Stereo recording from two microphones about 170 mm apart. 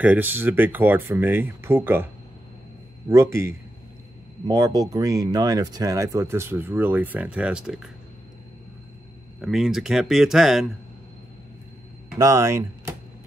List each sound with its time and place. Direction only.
0.0 s speech: 10° right (ahead or behind)
3.1 s speech: 15° right (ahead or behind)
9.4 s speech: centre (ahead or behind)
12.2 s speech: 20° right (ahead or behind)